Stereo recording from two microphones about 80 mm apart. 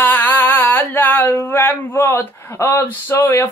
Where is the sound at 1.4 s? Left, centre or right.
Left.